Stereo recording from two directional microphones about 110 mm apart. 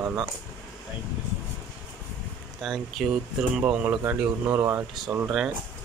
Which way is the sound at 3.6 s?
15° right (ahead or behind).